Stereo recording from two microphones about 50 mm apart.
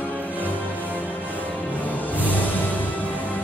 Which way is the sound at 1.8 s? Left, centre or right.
Left.